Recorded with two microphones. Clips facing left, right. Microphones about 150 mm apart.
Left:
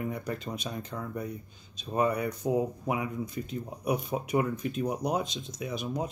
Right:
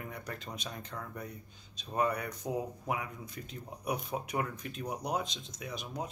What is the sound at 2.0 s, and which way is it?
Speech, 25° left (ahead or behind).